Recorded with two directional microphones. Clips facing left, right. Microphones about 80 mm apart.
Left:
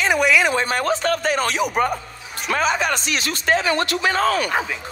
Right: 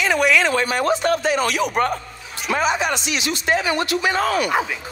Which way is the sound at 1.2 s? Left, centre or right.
Left.